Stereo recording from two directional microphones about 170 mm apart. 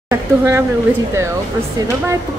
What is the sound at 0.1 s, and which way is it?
Speech, 15° right (ahead or behind).